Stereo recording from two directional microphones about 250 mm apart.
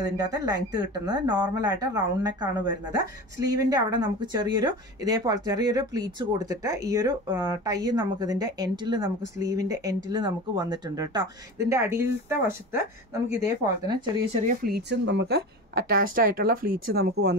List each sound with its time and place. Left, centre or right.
0.0 s speech: centre
14.4 s a woman's voice: right